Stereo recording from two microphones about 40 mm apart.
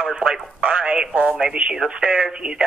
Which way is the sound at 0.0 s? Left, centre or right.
Right.